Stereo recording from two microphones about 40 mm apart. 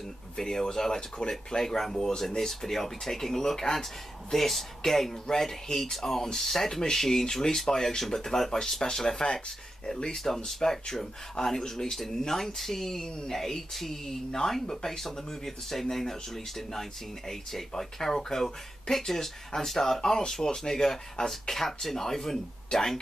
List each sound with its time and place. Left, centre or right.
0.4 s speech: centre